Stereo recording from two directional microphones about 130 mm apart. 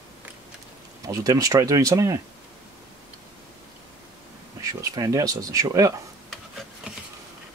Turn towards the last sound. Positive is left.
turn(degrees=0)  # may be behind; listen again after turning